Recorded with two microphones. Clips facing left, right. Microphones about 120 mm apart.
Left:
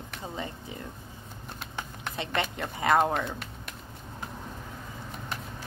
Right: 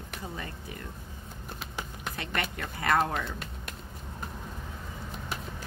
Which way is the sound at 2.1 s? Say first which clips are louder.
Left 4 dB; 20° left (ahead or behind).